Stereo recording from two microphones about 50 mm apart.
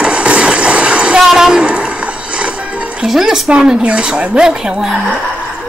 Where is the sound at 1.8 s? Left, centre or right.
Right.